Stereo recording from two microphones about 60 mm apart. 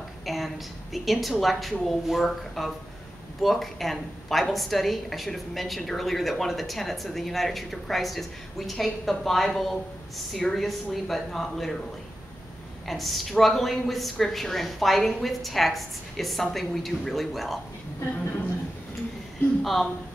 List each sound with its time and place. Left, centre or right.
0.2 s a woman's voice: centre
12.8 s a woman's voice: centre
19.6 s speech: centre